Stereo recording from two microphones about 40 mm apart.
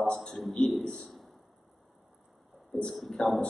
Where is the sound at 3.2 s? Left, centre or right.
Left.